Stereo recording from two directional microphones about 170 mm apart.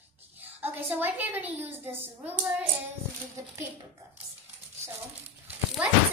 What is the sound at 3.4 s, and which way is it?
Speech, 20° right (ahead or behind).